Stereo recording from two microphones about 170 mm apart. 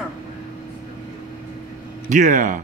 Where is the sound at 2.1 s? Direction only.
50° right (ahead or behind).